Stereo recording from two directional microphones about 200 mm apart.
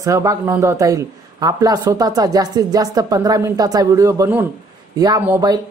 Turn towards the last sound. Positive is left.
turn(degrees=-15)  # may be behind; listen again after turning